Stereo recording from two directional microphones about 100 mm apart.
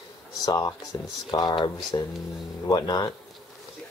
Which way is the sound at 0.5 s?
40° left (ahead or behind).